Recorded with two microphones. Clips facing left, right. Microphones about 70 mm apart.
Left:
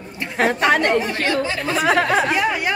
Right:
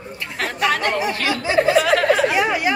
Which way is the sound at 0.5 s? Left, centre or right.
Left.